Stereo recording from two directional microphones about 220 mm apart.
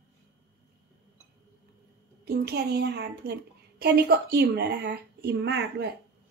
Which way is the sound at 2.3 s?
45° right (ahead or behind).